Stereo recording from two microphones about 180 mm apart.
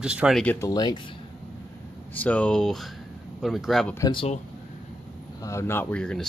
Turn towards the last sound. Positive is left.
turn(degrees=5)  # may be behind; listen again after turning